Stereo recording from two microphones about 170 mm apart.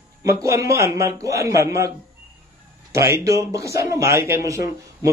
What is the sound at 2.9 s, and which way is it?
A man's voice, 15° right (ahead or behind).